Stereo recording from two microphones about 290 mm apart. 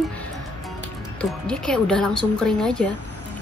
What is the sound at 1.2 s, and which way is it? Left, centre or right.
Speech, centre.